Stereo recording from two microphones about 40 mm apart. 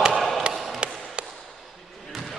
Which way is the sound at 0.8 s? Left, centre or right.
Right.